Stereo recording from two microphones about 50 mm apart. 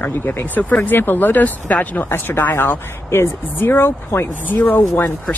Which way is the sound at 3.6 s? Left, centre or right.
Left.